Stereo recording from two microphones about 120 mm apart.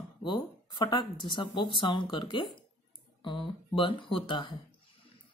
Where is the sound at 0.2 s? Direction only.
40° left (ahead or behind).